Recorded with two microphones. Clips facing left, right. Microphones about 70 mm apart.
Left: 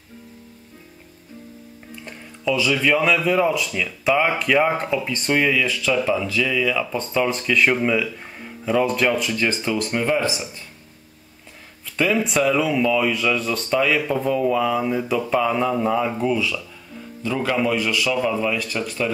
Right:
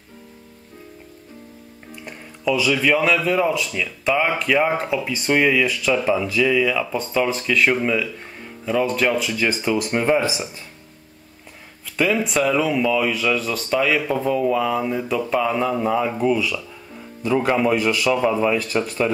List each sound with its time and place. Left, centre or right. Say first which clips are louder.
2.0 s speech: right 1 dB; centre
12.0 s speech: even; centre
17.2 s a man's voice: right 3 dB; centre